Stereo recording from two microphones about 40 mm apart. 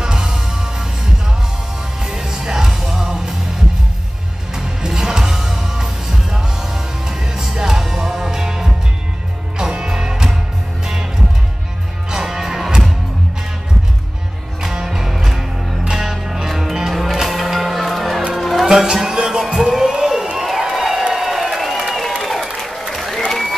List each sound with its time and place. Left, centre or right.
0.0 s music: centre
2.0 s music: centre
4.6 s music: centre
12.1 s music: centre
14.6 s music: centre
18.7 s music: centre
19.4 s crowd: centre
21.1 s a sound: centre
22.6 s applause: centre